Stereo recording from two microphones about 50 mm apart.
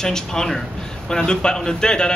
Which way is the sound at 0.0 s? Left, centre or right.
Centre.